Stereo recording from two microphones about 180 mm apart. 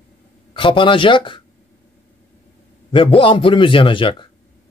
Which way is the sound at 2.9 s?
30° left (ahead or behind).